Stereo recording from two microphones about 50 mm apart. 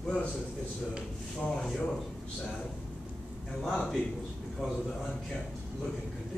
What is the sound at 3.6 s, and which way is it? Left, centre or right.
Speech, centre.